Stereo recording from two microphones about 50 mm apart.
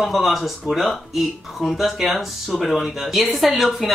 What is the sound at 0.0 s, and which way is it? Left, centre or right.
Speech, centre.